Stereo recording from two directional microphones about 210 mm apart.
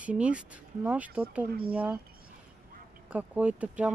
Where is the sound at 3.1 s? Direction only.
5° right (ahead or behind).